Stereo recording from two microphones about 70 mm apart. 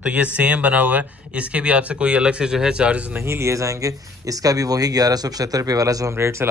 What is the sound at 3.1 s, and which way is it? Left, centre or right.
Speech, right.